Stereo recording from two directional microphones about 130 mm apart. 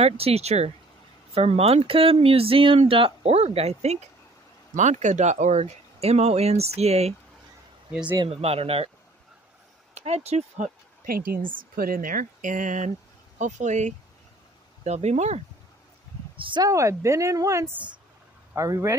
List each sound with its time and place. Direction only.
0.0 s speech: 50° right (ahead or behind)
7.9 s speech: 10° right (ahead or behind)
8.3 s speech: 50° right (ahead or behind)
9.9 s speech: 55° right (ahead or behind)
16.4 s speech: 35° right (ahead or behind)
16.7 s speech: 25° right (ahead or behind)